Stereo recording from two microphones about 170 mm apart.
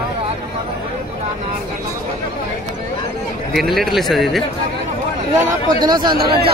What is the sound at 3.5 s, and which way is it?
Speech, centre (ahead or behind).